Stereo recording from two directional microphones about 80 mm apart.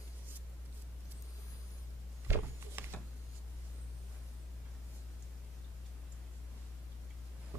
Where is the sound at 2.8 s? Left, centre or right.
Right.